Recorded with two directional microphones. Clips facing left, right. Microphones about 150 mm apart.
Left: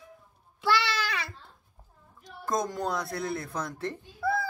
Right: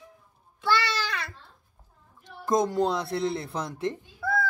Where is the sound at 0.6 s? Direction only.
Centre (ahead or behind).